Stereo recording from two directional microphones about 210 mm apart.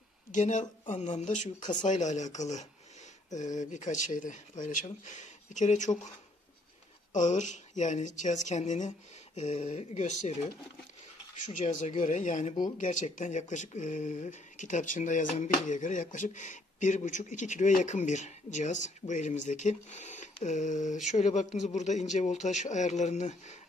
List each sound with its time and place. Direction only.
0.3 s speech: 35° left (ahead or behind)
7.1 s speech: 35° left (ahead or behind)